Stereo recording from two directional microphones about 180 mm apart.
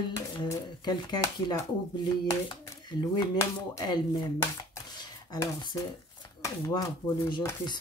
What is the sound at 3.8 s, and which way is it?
Speech, 25° left (ahead or behind).